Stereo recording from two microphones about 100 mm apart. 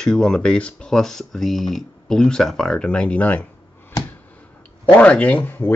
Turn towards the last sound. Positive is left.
turn(degrees=20)  # may be behind; listen again after turning